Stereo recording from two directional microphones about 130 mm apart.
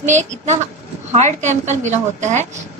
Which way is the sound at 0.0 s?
65° right (ahead or behind).